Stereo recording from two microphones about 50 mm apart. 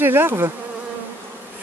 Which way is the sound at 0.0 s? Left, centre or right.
Right.